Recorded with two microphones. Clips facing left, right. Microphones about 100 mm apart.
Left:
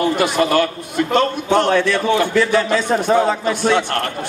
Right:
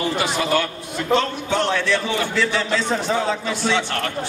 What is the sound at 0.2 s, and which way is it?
A man's voice, 55° left (ahead or behind).